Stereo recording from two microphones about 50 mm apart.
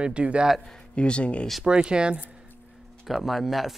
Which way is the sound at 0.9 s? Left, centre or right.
Left.